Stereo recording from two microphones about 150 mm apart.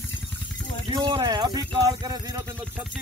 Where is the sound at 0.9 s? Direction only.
35° right (ahead or behind).